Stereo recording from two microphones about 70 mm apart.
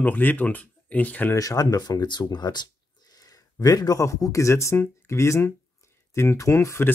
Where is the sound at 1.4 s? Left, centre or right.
Left.